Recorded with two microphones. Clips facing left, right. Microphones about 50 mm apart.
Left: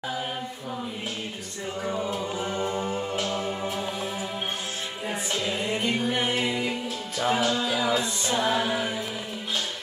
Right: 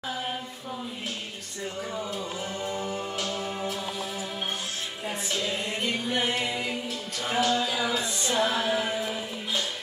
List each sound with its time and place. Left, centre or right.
2.3 s music: left
5.0 s music: centre
7.2 s a capella: centre
8.3 s music: centre